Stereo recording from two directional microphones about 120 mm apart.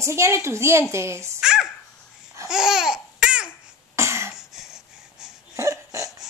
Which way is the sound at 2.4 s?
5° right (ahead or behind).